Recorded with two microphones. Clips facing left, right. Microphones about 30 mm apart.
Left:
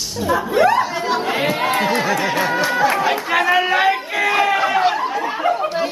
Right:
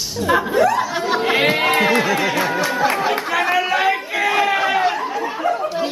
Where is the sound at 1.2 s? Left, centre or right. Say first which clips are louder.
Right 3 dB; right.